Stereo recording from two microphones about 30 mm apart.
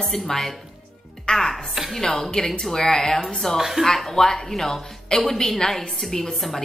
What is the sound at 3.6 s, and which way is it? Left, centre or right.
Speech, centre.